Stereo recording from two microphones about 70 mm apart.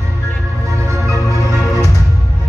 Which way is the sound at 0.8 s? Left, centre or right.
Right.